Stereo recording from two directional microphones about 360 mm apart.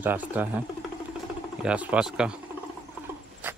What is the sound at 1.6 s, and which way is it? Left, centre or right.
Speech, centre.